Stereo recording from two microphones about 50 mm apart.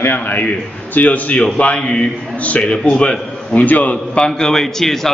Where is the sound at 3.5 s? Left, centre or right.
Left.